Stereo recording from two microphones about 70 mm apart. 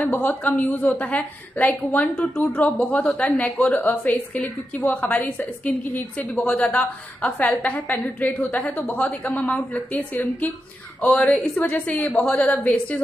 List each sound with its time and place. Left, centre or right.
0.0 s a woman's voice: left
11.1 s a woman's voice: centre